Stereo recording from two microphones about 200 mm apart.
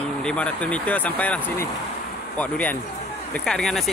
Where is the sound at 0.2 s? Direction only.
5° left (ahead or behind).